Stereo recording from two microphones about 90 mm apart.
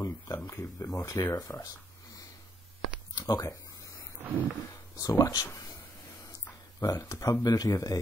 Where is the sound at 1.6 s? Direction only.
40° left (ahead or behind).